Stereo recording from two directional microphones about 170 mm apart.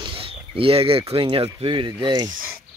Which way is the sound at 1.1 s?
30° right (ahead or behind).